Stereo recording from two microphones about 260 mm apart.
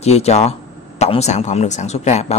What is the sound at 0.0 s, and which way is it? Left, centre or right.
Speech, left.